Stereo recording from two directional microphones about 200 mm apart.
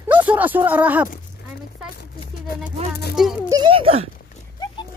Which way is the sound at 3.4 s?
20° right (ahead or behind).